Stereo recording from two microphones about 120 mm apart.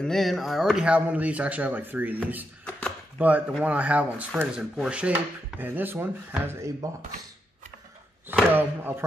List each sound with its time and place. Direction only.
0.0 s speech: centre (ahead or behind); by 6.9 s 25° right (ahead or behind)
8.5 s speech: 20° right (ahead or behind)